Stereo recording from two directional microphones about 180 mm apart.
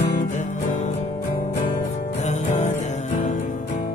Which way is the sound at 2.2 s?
40° left (ahead or behind).